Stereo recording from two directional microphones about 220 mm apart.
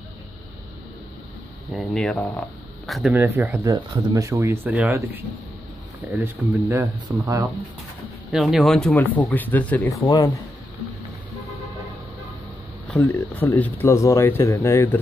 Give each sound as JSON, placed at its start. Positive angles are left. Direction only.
{"t": 1.7, "sound": "speech", "side_deg": 0}
{"t": 8.3, "sound": "speech", "side_deg": 0}
{"t": 10.0, "sound": "speech", "side_deg": 20}
{"t": 12.8, "sound": "speech", "side_deg": 5}